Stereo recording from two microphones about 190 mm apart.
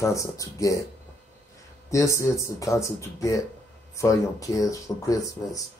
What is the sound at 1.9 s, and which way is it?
Speech, 15° left (ahead or behind).